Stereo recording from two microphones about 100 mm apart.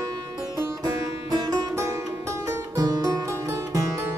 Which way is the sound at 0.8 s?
40° right (ahead or behind).